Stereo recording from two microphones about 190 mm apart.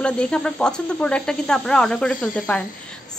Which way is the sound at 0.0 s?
5° left (ahead or behind).